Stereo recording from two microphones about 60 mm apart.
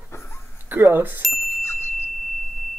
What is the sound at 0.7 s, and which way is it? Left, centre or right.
Speech, right.